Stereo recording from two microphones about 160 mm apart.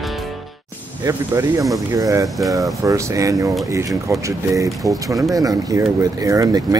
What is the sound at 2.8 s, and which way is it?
Speech, 20° right (ahead or behind).